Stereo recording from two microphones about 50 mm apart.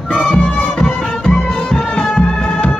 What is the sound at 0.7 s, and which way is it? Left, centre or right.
Music, centre.